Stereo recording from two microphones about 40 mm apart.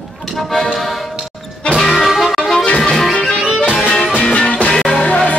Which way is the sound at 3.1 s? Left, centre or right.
Left.